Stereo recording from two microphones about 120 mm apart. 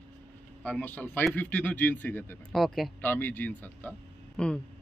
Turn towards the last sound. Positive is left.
turn(degrees=5)  # may be behind; listen again after turning